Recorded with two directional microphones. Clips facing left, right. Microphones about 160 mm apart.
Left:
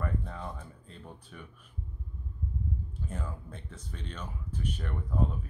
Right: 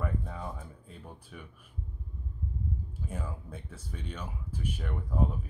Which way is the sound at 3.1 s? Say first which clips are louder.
Right 1 dB; 10° right (ahead or behind).